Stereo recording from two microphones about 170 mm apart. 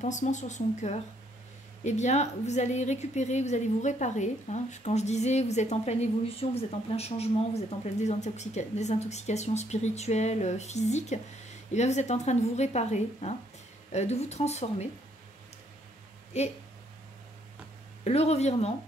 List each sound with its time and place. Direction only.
0.0 s a woman's voice: 45° left (ahead or behind)
16.3 s a woman's voice: 40° left (ahead or behind)
18.0 s a woman's voice: 40° left (ahead or behind)